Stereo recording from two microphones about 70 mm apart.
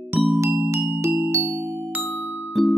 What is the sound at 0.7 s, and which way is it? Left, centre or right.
Music, right.